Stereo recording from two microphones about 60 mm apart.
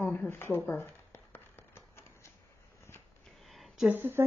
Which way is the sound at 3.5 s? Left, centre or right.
Centre.